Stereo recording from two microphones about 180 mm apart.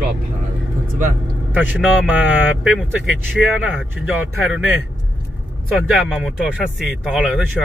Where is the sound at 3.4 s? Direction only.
5° right (ahead or behind).